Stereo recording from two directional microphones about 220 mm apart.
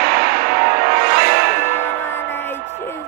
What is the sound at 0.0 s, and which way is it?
Music, 40° right (ahead or behind).